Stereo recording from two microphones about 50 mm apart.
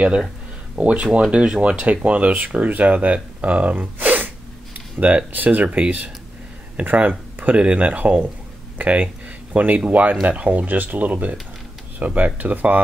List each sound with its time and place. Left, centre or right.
0.7 s speech: right
7.5 s speech: right